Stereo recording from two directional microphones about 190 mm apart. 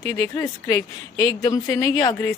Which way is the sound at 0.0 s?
15° left (ahead or behind).